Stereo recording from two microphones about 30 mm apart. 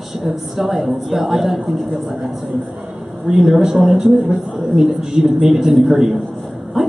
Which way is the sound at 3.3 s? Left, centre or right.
Centre.